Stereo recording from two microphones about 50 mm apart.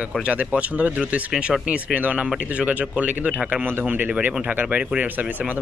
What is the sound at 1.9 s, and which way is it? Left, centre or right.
Speech, right.